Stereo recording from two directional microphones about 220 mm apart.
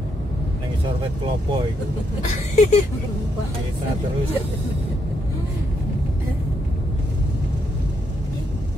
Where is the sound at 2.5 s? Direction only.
30° left (ahead or behind).